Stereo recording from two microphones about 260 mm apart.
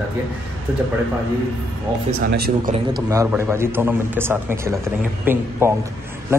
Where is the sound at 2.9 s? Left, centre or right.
Centre.